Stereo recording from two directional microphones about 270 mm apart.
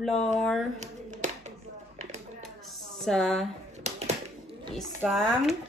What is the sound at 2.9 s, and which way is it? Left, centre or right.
Speech, centre.